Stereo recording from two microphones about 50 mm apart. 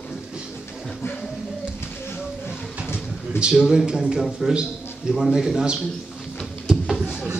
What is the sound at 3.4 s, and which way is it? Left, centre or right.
A man's voice, centre.